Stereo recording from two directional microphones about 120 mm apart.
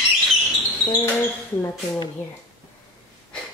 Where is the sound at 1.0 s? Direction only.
15° left (ahead or behind).